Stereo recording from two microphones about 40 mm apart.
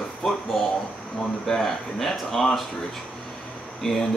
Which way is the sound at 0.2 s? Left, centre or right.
Centre.